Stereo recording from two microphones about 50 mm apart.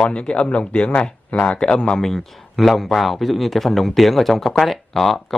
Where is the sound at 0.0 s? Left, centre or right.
Left.